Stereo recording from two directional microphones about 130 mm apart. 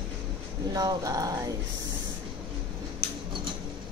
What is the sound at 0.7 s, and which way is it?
Speech, 30° right (ahead or behind).